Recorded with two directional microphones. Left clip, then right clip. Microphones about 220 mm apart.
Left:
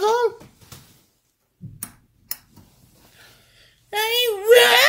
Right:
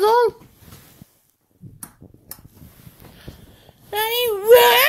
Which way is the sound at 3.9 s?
15° right (ahead or behind).